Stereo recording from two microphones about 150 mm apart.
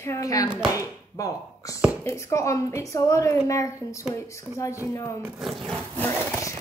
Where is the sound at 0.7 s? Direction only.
20° left (ahead or behind).